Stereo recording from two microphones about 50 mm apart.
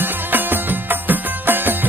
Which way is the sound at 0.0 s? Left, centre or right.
Right.